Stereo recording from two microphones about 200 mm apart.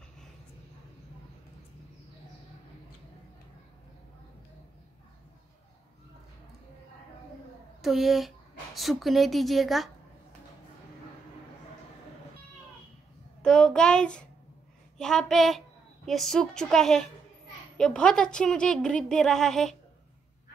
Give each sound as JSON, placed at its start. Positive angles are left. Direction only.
{"t": 7.8, "sound": "a woman's voice", "side_deg": 0}
{"t": 13.4, "sound": "a sound", "side_deg": 5}
{"t": 15.0, "sound": "a woman's voice", "side_deg": 5}